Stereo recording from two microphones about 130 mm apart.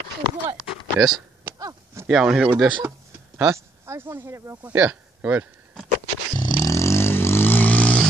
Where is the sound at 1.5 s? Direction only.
30° right (ahead or behind).